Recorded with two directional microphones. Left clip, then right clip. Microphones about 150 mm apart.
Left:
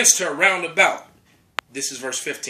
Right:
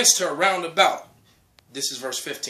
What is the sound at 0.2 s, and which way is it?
Speech, 20° right (ahead or behind).